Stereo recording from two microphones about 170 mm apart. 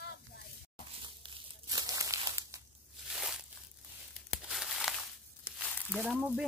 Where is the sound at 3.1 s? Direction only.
5° right (ahead or behind).